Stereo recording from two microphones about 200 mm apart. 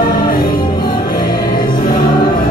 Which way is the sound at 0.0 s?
20° left (ahead or behind).